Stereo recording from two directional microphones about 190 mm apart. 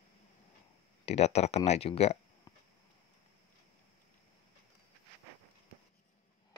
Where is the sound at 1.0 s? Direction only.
35° left (ahead or behind).